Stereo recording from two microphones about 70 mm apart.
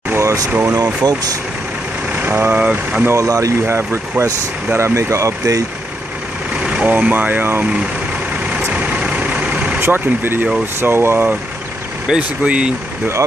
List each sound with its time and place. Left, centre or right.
0.2 s vehicle: right
0.5 s speech: right
1.0 s speech: right
2.1 s speech: right
2.6 s speech: centre
3.2 s speech: right
3.6 s speech: right
6.6 s vehicle: centre
6.9 s speech: right
8.7 s vehicle: centre
9.8 s speech: right
12.2 s speech: centre